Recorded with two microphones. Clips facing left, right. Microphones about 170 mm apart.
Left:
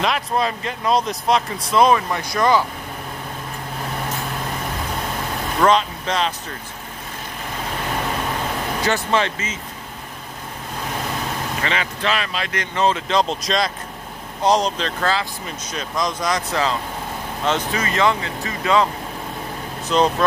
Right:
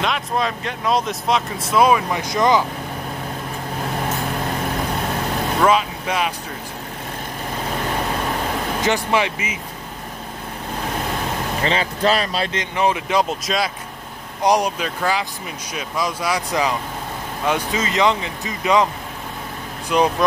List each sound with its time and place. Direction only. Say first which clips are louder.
0.0 s speech: left 1 dB; centre (ahead or behind); by 2.6 s 20° right (ahead or behind)
5.6 s speech: left 1 dB; 5° right (ahead or behind)
8.8 s speech: right 1 dB; 15° right (ahead or behind)
11.6 s speech: right 6 dB; 35° right (ahead or behind)
12.5 s speech: left 2 dB; 15° right (ahead or behind)
19.9 s speech: even; 10° right (ahead or behind)